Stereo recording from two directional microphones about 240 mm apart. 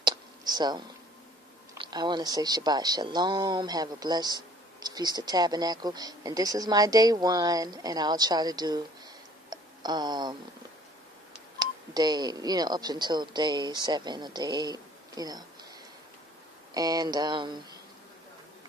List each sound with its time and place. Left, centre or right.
0.0 s a sound: centre
1.8 s speech: centre
11.6 s speech: centre
16.7 s speech: centre